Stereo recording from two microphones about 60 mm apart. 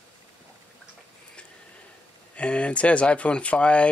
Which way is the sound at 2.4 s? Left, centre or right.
Centre.